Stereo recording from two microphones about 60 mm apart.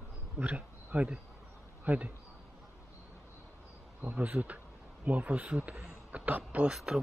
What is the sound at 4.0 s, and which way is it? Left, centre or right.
Speech, right.